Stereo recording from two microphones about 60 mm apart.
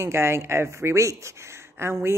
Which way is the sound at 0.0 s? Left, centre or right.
Right.